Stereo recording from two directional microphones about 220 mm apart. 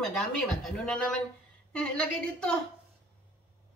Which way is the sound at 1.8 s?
5° left (ahead or behind).